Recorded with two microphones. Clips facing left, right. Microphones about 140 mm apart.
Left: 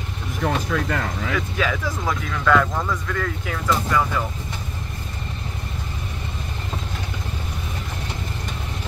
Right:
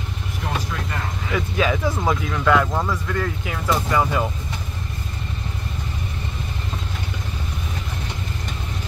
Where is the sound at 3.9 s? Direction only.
25° right (ahead or behind).